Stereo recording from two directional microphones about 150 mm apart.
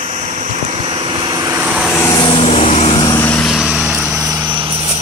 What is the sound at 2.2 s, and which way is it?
Vehicle, 40° left (ahead or behind).